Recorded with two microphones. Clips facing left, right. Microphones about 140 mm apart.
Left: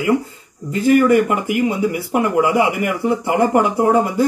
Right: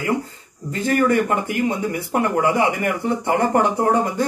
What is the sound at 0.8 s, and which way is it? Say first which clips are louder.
Speech: left 5 dB; 10° left (ahead or behind).